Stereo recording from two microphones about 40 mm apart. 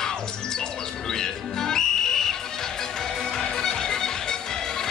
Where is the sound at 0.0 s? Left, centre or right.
Centre.